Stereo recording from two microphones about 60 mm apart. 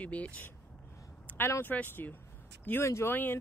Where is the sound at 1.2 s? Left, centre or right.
Left.